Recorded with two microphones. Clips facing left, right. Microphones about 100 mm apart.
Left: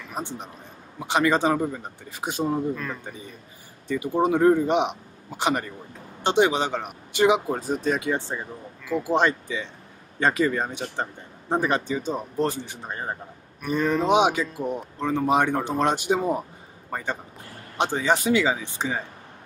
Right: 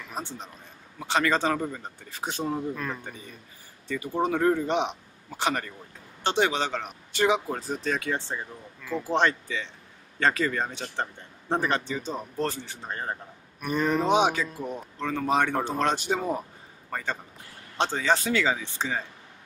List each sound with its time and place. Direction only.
0.1 s a man's voice: 15° left (ahead or behind)
2.7 s speech: 5° right (ahead or behind)
3.8 s speech: 15° left (ahead or behind)
13.7 s speech: 10° right (ahead or behind)
14.0 s speech: 15° left (ahead or behind)